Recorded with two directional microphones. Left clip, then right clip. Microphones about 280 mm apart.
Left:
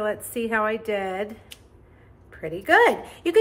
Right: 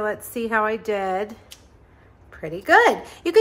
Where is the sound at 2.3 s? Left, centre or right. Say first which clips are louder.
Right 2 dB; centre.